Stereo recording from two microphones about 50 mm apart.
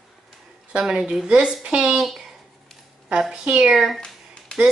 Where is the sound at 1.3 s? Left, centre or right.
Right.